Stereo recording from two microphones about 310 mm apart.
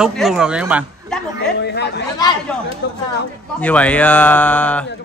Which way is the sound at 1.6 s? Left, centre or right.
Left.